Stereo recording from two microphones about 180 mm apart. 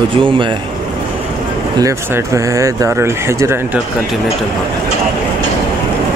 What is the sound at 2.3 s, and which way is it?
Speech, 15° right (ahead or behind).